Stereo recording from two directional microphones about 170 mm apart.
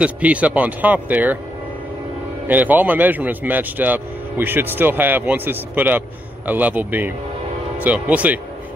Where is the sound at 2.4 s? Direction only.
10° right (ahead or behind).